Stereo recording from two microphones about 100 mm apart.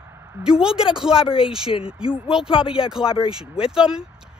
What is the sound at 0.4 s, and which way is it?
Speech, 5° right (ahead or behind).